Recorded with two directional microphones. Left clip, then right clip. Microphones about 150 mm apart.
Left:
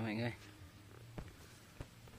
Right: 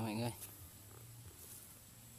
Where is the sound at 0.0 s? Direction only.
15° right (ahead or behind).